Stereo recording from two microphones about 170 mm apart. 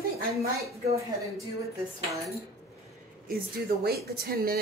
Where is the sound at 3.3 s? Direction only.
65° right (ahead or behind).